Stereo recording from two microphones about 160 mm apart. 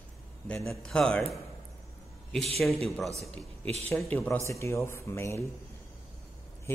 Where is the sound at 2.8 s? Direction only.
Centre (ahead or behind).